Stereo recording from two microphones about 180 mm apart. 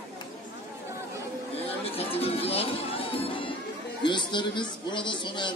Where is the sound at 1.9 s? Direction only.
35° left (ahead or behind).